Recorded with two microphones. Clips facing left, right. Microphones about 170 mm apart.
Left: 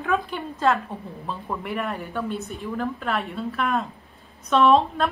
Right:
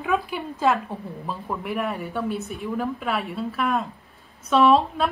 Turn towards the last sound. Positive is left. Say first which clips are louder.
# even
turn(degrees=0)  # may be behind; listen again after turning